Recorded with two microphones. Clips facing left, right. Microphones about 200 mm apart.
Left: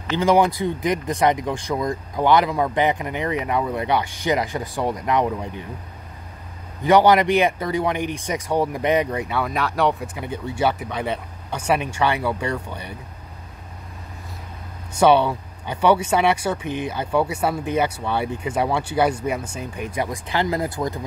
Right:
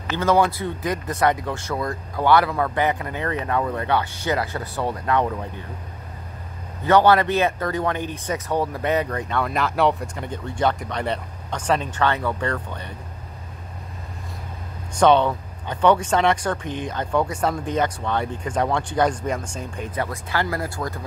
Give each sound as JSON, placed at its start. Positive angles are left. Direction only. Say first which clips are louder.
{"t": 0.2, "sound": "a man's voice", "louder": "left 2 dB", "side_deg": 15}
{"t": 6.8, "sound": "a man's voice", "louder": "left 1 dB", "side_deg": 15}
{"t": 15.0, "sound": "a man's voice", "louder": "even", "side_deg": 10}